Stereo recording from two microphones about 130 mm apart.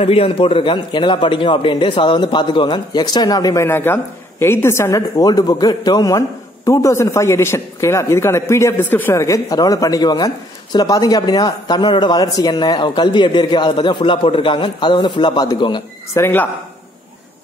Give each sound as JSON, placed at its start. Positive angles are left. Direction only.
{"t": 0.0, "sound": "a man's voice", "side_deg": 50}
{"t": 16.1, "sound": "speech", "side_deg": 20}